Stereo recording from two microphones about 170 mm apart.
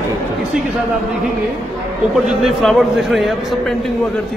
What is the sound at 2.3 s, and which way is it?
A man's voice, centre (ahead or behind).